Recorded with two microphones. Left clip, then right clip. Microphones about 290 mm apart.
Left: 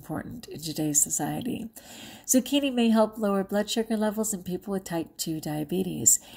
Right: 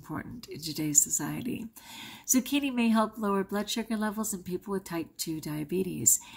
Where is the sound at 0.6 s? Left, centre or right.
Centre.